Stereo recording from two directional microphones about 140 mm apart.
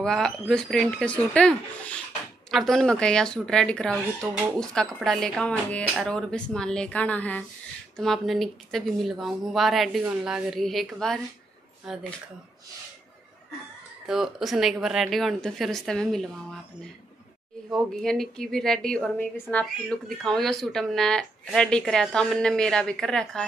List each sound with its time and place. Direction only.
0.0 s a woman's voice: 5° left (ahead or behind)
14.0 s speech: 5° right (ahead or behind)
17.7 s speech: centre (ahead or behind)